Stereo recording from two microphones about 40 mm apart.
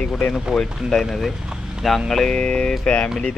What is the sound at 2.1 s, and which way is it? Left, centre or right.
Speech, centre.